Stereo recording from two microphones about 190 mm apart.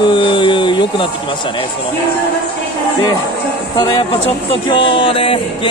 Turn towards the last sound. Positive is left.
turn(degrees=30)  # may be behind; listen again after turning